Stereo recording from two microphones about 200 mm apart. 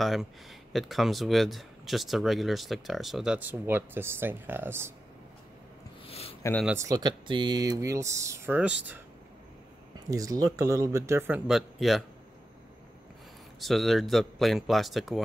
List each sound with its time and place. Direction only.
0.0 s speech: centre (ahead or behind)
6.0 s a sound: 30° left (ahead or behind)
6.6 s speech: 10° right (ahead or behind)
10.0 s speech: 15° right (ahead or behind); by 12.0 s centre (ahead or behind)
13.6 s speech: centre (ahead or behind)